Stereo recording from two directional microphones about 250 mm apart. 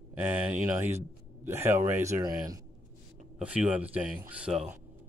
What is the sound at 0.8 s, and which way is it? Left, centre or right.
Speech, centre.